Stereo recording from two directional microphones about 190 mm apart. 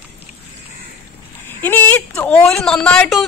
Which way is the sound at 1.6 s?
10° left (ahead or behind).